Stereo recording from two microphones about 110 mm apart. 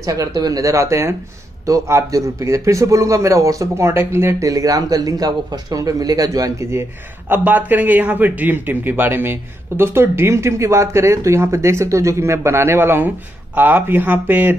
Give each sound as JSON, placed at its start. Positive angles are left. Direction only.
{"t": 0.0, "sound": "a man's voice", "side_deg": -35}